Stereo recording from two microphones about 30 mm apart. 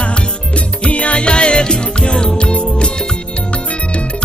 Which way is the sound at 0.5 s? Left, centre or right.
Left.